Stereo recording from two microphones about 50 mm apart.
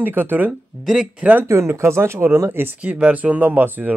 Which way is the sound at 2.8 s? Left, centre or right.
Right.